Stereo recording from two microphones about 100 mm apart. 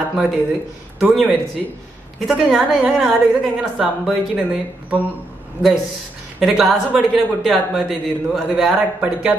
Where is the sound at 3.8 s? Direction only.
Centre (ahead or behind).